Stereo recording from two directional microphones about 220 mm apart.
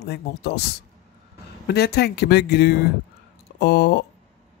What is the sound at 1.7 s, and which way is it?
Speech, 50° left (ahead or behind).